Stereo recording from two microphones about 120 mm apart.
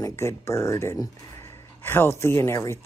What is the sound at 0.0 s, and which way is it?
Speech, 25° left (ahead or behind).